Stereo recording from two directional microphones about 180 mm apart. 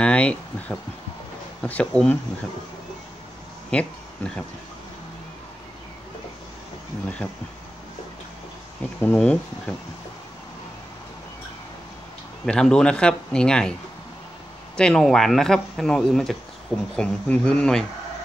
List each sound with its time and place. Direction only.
0.0 s speech: 5° left (ahead or behind)
3.7 s speech: 5° left (ahead or behind)
9.0 s speech: 5° left (ahead or behind)
12.4 s speech: 5° left (ahead or behind)
14.8 s speech: 5° left (ahead or behind)